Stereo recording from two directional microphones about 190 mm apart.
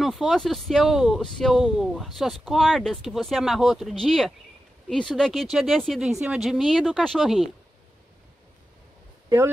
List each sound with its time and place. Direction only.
0.0 s speech: centre (ahead or behind)